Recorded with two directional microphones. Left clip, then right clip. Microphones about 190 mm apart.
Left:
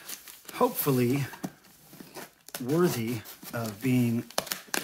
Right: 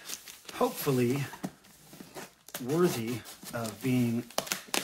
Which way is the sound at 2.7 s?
40° left (ahead or behind).